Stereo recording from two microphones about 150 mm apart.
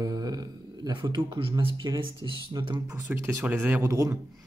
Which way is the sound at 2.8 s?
15° right (ahead or behind).